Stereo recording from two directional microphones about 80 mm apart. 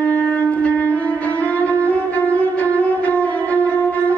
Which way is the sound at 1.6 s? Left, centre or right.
Centre.